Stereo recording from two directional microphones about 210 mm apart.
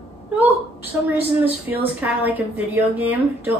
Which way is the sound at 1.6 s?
10° right (ahead or behind).